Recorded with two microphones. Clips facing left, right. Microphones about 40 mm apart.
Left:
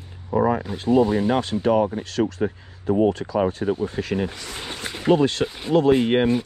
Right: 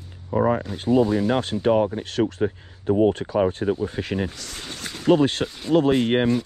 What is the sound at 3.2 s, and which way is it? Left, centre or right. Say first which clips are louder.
Speech: even; centre.